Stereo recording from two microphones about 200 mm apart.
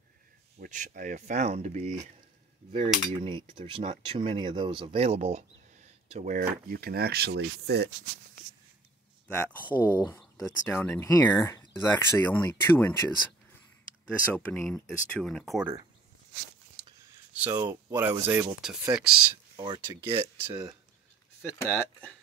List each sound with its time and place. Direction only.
0.6 s speech: 40° right (ahead or behind)
3.2 s speech: 25° right (ahead or behind); by 7.9 s 55° right (ahead or behind)
9.3 s speech: 10° left (ahead or behind)
9.7 s speech: 10° right (ahead or behind)
9.9 s speech: 15° left (ahead or behind)
14.0 s speech: 5° left (ahead or behind)
17.3 s speech: 10° right (ahead or behind)
19.5 s speech: 20° right (ahead or behind)
21.4 s speech: 10° left (ahead or behind)